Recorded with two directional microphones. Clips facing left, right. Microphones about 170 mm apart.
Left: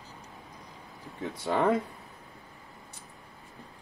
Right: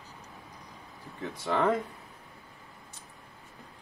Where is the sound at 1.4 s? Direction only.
15° left (ahead or behind).